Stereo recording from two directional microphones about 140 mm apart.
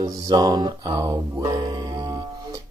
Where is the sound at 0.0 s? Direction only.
25° right (ahead or behind).